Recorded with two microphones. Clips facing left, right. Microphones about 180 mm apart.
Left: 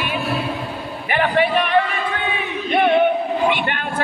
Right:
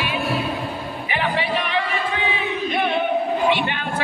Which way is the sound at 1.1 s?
55° left (ahead or behind).